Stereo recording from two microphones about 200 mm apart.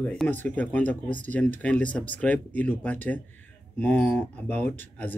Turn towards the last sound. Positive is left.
turn(degrees=10)  # may be behind; listen again after turning